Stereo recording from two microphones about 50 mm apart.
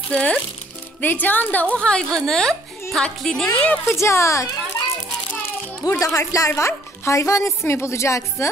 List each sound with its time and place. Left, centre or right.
0.1 s a woman's voice: left
1.0 s speech: left
1.8 s a woman's voice: centre
3.5 s a woman's voice: left
3.9 s speech: left
5.9 s speech: left
7.6 s a woman's voice: left